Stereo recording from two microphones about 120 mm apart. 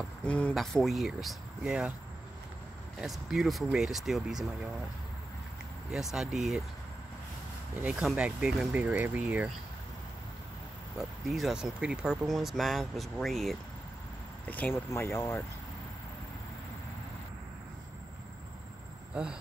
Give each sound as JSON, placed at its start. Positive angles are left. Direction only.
{"t": 0.2, "sound": "speech", "side_deg": 10}
{"t": 3.0, "sound": "speech", "side_deg": 0}
{"t": 5.9, "sound": "speech", "side_deg": -5}
{"t": 7.8, "sound": "speech", "side_deg": -5}
{"t": 11.0, "sound": "speech", "side_deg": 0}
{"t": 14.5, "sound": "speech", "side_deg": 15}